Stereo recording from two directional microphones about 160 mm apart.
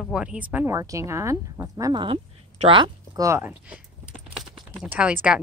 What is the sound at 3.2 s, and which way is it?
A woman's voice, 15° right (ahead or behind).